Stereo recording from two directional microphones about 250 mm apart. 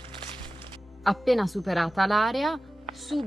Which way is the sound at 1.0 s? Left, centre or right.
Centre.